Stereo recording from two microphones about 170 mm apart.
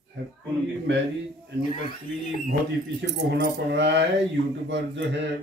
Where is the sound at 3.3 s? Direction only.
90° right.